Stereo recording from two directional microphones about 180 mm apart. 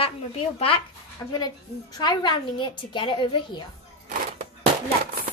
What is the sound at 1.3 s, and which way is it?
A child's voice, 20° left (ahead or behind).